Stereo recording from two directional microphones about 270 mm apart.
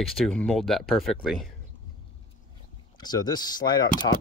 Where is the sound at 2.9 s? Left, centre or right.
Centre.